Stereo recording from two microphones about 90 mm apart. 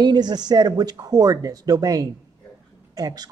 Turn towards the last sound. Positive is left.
turn(degrees=-45)  # may be behind; listen again after turning